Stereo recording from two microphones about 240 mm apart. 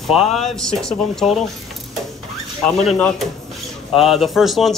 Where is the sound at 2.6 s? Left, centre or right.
Centre.